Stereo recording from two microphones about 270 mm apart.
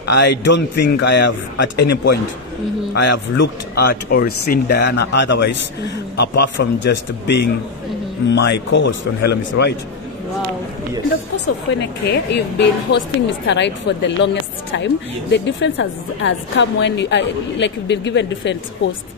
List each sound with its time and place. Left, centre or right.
0.1 s a woman's voice: left
12.0 s a woman's voice: left
15.3 s a woman's voice: left